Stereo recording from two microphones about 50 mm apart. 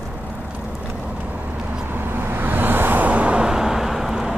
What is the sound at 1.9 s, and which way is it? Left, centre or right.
Vehicle, right.